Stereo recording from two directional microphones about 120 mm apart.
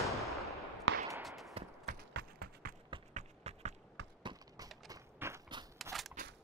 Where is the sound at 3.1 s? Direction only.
75° right (ahead or behind).